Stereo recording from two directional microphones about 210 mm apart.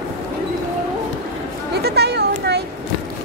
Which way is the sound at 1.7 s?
50° right (ahead or behind).